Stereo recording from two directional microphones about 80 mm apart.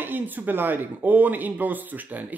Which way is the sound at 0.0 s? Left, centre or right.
Right.